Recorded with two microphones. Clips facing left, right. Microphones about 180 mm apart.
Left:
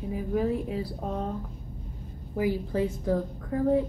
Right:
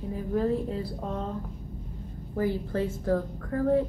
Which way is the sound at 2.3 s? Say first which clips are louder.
Left 1 dB; 10° left (ahead or behind).